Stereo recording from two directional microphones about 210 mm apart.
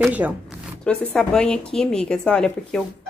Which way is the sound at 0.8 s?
5° left (ahead or behind).